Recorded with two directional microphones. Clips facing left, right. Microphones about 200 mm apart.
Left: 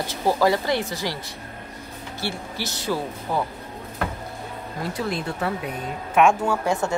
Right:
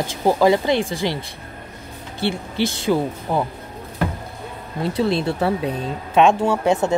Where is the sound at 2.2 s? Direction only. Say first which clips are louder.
Right 9 dB; 20° right (ahead or behind).